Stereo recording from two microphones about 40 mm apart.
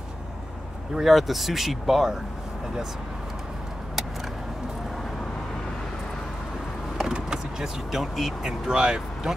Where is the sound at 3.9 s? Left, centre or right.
Centre.